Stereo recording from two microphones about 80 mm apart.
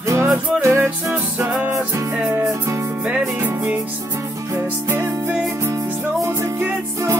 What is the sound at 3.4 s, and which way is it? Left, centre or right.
Music, right.